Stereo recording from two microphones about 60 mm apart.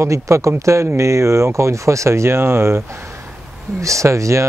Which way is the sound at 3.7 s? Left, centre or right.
Right.